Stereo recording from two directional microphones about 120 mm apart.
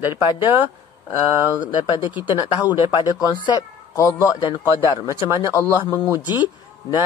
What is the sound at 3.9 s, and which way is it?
Speech, 25° left (ahead or behind).